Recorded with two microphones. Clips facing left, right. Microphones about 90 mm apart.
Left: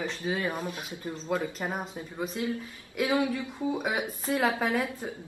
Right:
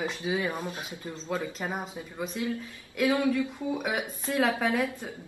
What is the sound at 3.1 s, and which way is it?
A woman's voice, 20° left (ahead or behind).